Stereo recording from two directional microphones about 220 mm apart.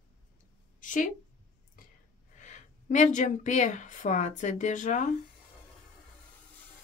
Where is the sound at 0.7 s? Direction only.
35° left (ahead or behind).